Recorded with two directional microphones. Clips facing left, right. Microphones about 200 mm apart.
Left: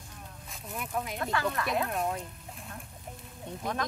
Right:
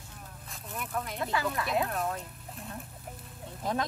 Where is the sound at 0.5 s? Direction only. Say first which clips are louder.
Left 1 dB; 5° left (ahead or behind).